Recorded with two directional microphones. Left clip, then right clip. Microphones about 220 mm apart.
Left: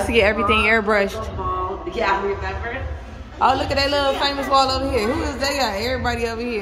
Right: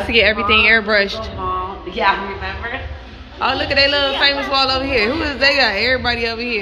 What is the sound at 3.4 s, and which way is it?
Speech, 10° left (ahead or behind).